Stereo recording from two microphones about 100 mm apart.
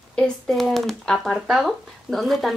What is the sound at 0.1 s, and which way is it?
Speech, 5° left (ahead or behind).